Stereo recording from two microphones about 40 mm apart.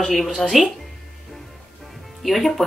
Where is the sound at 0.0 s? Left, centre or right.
Centre.